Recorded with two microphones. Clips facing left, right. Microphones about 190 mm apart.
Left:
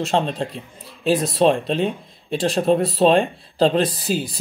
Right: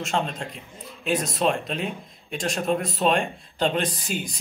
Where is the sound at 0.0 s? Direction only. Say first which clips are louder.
Left 6 dB; 35° left (ahead or behind).